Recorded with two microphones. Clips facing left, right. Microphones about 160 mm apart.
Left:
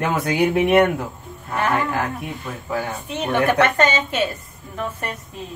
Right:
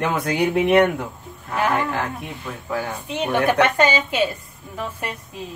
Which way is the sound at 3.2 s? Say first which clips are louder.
Even; 10° right (ahead or behind).